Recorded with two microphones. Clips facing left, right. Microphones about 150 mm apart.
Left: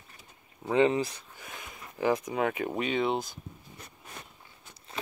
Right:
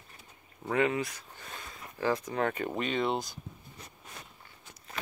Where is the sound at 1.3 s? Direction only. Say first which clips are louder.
Even; 10° left (ahead or behind).